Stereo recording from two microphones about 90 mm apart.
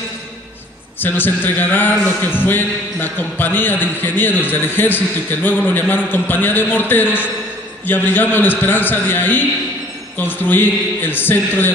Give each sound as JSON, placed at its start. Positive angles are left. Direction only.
{"t": 1.0, "sound": "a man's voice", "side_deg": 20}